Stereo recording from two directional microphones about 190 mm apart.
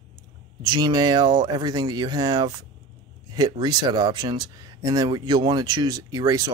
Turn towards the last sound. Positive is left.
turn(degrees=-20)  # may be behind; listen again after turning